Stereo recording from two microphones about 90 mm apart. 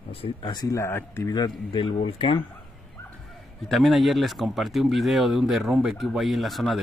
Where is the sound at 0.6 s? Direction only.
35° left (ahead or behind).